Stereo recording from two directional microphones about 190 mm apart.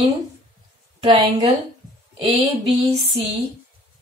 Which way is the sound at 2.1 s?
30° right (ahead or behind).